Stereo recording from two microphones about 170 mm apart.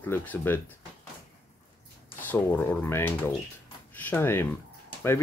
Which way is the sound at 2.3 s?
10° left (ahead or behind).